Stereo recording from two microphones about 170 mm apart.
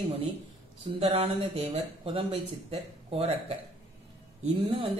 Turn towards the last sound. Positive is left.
turn(degrees=-35)  # may be behind; listen again after turning